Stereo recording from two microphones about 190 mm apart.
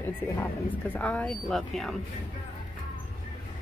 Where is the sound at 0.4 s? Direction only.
10° left (ahead or behind).